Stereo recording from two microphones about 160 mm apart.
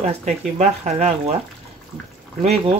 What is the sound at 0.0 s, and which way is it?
Speech, 45° right (ahead or behind).